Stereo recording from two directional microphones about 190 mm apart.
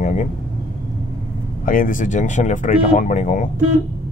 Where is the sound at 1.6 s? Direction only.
45° left (ahead or behind).